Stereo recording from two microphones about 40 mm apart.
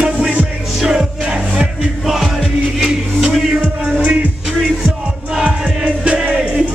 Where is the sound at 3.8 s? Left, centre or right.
Right.